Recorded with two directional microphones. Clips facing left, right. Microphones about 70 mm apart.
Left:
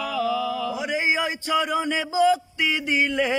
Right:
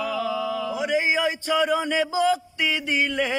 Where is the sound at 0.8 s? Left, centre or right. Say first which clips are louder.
Right 3 dB; centre.